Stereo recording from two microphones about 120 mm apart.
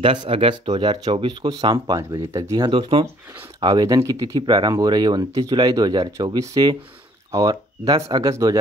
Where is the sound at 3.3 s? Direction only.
20° right (ahead or behind).